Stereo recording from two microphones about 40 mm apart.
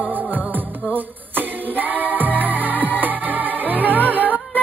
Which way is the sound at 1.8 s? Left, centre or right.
Right.